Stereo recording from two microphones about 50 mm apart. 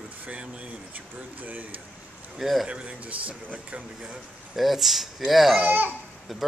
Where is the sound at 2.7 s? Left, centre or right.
Right.